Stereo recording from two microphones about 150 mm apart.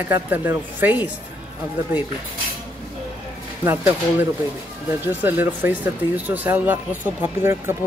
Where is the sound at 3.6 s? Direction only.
15° right (ahead or behind).